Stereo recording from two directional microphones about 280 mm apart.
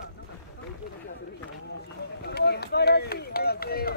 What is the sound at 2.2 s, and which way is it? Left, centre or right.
Run, left.